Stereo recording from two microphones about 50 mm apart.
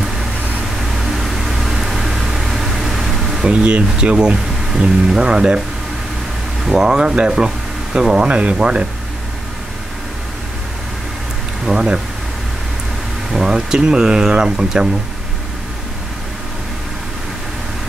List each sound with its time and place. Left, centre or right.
0.7 s vehicle: centre
3.4 s speech: right
6.7 s speech: centre
11.6 s speech: centre
13.3 s speech: centre